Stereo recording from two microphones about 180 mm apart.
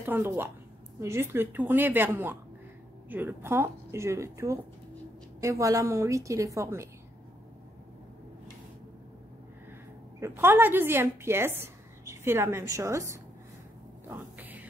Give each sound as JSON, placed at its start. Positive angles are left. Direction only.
{"t": 0.0, "sound": "a woman's voice", "side_deg": -10}
{"t": 10.2, "sound": "a woman's voice", "side_deg": -10}
{"t": 14.0, "sound": "music", "side_deg": -10}